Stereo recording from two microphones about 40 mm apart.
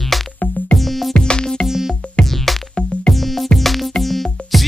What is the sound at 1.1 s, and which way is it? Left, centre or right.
Music, left.